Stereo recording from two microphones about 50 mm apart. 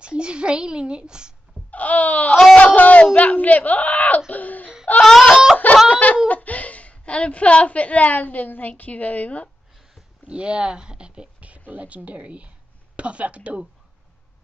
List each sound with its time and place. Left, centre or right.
0.0 s a child's voice: centre
1.7 s a man's voice: left
4.3 s laughter: left
5.0 s whimper: centre
5.3 s a sound: centre
5.9 s a sound: left
6.2 s a woman's voice: left
10.2 s speech: right